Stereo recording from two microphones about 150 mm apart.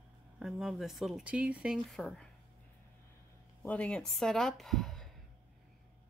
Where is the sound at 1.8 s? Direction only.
Centre (ahead or behind).